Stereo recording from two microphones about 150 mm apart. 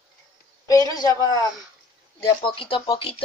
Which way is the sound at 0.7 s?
25° left (ahead or behind).